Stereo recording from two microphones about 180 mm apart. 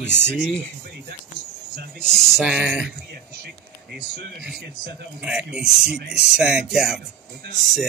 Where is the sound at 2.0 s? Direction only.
Centre (ahead or behind).